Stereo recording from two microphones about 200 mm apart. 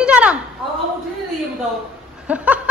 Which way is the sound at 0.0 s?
5° right (ahead or behind).